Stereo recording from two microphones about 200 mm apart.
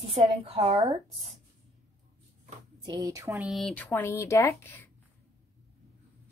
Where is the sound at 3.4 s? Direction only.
Centre (ahead or behind).